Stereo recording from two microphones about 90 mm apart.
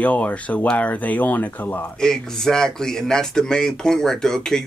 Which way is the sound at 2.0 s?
5° left (ahead or behind).